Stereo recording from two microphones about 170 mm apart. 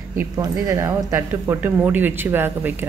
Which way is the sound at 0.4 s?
20° right (ahead or behind).